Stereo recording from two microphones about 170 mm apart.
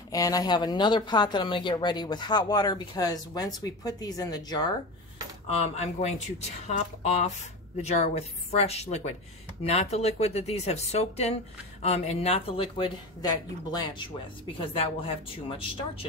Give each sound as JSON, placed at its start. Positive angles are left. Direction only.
{"t": 0.1, "sound": "speech", "side_deg": 20}
{"t": 5.5, "sound": "speech", "side_deg": 40}